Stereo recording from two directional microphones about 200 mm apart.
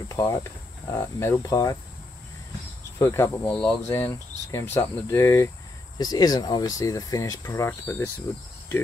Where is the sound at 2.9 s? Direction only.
15° left (ahead or behind).